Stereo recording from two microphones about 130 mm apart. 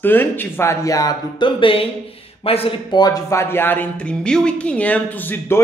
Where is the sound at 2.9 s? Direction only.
30° left (ahead or behind).